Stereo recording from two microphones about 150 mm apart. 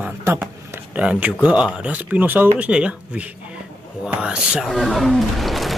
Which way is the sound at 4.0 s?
5° right (ahead or behind).